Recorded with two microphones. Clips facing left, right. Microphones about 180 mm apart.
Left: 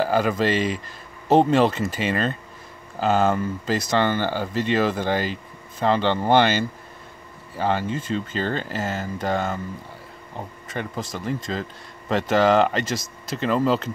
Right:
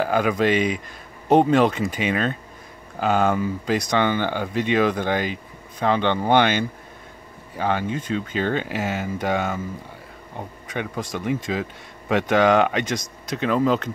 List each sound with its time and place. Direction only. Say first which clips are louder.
0.0 s speech: right 1 dB; 5° left (ahead or behind)
1.3 s speech: right 1 dB; 10° right (ahead or behind)
7.5 s speech: even; centre (ahead or behind)
10.7 s speech: right 2 dB; centre (ahead or behind)